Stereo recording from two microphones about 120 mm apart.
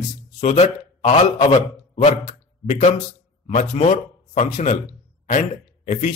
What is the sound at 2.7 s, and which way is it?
A man's voice, 80° left.